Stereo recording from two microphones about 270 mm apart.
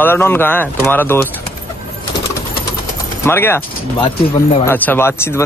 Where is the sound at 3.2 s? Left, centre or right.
Centre.